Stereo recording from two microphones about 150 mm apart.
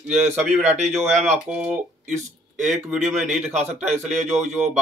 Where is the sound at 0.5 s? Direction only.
50° right (ahead or behind).